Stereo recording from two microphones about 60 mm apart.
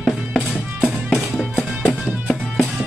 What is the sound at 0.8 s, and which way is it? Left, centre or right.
Music, centre.